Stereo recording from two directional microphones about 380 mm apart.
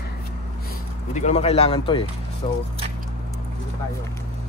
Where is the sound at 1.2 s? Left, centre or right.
Centre.